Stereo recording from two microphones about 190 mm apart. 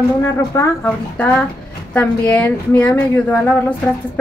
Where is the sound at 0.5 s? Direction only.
10° left (ahead or behind).